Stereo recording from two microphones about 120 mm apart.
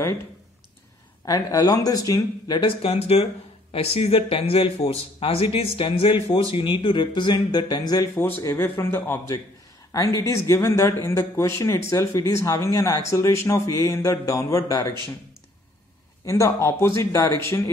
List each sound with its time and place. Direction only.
1.2 s speech: 30° left (ahead or behind)
2.6 s speech: 55° left (ahead or behind); by 14.9 s 30° left (ahead or behind)
16.3 s speech: 25° left (ahead or behind)